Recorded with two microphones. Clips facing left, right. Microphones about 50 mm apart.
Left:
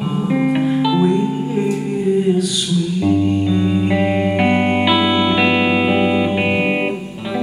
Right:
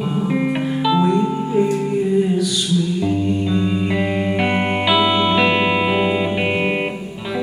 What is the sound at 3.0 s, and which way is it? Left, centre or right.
Music, left.